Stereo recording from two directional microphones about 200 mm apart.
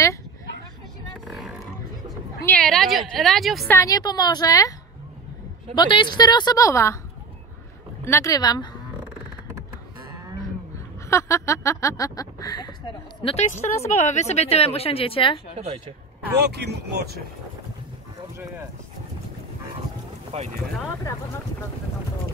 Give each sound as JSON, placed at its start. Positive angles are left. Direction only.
{"t": 1.2, "sound": "a sound", "side_deg": 0}
{"t": 3.2, "sound": "speech", "side_deg": 0}
{"t": 3.7, "sound": "a woman's voice", "side_deg": 15}
{"t": 5.8, "sound": "a woman's voice", "side_deg": 25}
{"t": 8.0, "sound": "a sound", "side_deg": 15}
{"t": 11.1, "sound": "a sound", "side_deg": 15}
{"t": 13.2, "sound": "a woman's voice", "side_deg": 30}
{"t": 16.4, "sound": "speech", "side_deg": -55}
{"t": 20.2, "sound": "speech", "side_deg": -30}